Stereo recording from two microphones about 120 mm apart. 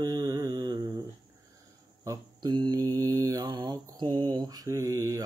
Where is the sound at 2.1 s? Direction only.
35° right (ahead or behind).